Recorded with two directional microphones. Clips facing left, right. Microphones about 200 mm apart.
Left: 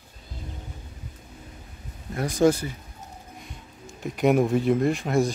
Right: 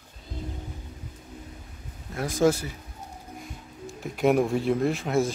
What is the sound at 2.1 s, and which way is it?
Speech, centre (ahead or behind).